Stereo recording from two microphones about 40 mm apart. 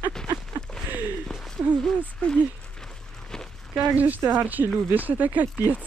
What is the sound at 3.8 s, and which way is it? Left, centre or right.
Speech, right.